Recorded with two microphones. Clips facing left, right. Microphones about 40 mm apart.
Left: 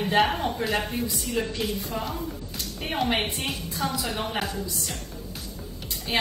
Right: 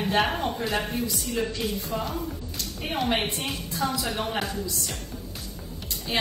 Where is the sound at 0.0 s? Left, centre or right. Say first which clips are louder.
Left 2 dB; centre.